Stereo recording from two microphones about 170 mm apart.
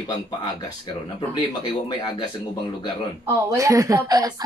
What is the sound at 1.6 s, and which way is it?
Speech, 25° left (ahead or behind).